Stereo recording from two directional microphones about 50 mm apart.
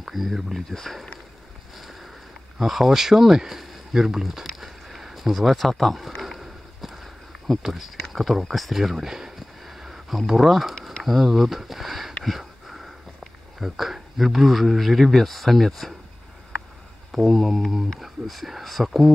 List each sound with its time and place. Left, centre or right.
0.0 s speech: centre
1.8 s boat: centre
2.6 s a sound: centre
7.6 s speech: centre
10.7 s a sound: centre
11.1 s speech: centre
17.1 s speech: centre